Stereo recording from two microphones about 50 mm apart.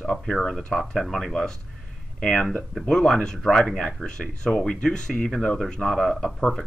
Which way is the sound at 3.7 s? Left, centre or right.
Centre.